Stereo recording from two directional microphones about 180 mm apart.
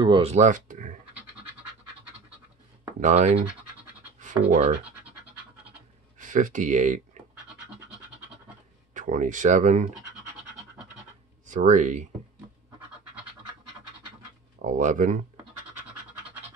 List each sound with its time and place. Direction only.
0.0 s speech: 30° right (ahead or behind)
3.0 s speech: 40° right (ahead or behind)
6.1 s speech: 45° right (ahead or behind)
8.9 s speech: 45° right (ahead or behind)
11.4 s speech: 45° right (ahead or behind)
14.6 s speech: 45° right (ahead or behind)